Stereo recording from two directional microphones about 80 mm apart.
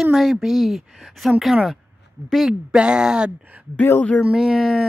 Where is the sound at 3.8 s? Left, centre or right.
Left.